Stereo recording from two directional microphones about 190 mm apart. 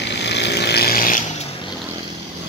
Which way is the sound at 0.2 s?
65° left (ahead or behind).